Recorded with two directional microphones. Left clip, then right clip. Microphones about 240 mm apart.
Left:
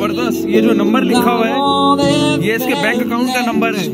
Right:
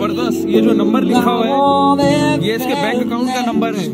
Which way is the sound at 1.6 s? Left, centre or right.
Right.